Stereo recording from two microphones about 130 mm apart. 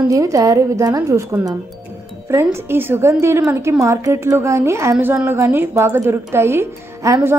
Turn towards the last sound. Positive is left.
turn(degrees=-20)  # may be behind; listen again after turning